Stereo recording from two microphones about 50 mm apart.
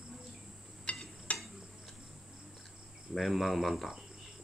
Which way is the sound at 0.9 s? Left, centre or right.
Left.